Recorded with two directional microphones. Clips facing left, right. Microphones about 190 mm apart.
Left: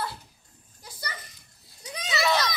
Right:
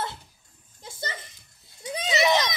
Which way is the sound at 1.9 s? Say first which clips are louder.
Right 3 dB; 25° right (ahead or behind).